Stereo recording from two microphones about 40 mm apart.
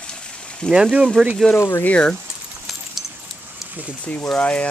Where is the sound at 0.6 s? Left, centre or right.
Left.